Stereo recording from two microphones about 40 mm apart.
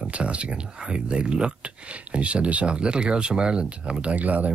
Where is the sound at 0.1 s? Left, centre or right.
Right.